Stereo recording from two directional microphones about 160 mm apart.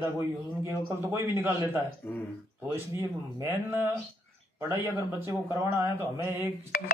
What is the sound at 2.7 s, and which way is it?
Speech, 15° right (ahead or behind).